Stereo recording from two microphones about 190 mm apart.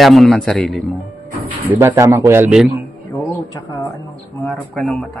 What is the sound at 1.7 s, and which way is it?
Speech, 10° right (ahead or behind).